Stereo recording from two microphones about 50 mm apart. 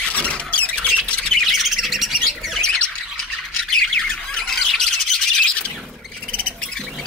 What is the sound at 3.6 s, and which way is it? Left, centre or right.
Squawk, centre.